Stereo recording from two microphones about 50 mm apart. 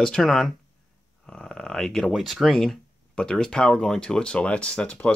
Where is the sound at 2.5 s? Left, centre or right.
Centre.